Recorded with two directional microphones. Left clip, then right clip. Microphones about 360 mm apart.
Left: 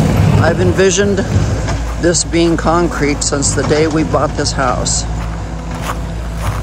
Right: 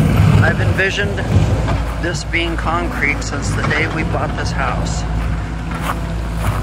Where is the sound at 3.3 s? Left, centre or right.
Centre.